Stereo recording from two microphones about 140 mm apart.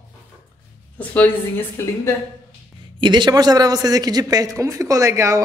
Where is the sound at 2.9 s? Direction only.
35° right (ahead or behind).